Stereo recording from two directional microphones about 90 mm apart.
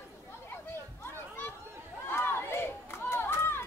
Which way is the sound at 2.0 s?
25° left (ahead or behind).